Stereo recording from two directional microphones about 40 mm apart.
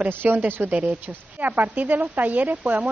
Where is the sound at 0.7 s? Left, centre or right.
Right.